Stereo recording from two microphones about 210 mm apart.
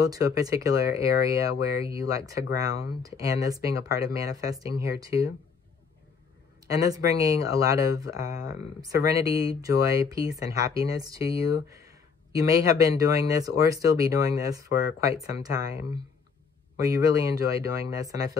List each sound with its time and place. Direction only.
0.0 s speech: 15° right (ahead or behind)
6.7 s speech: 15° right (ahead or behind)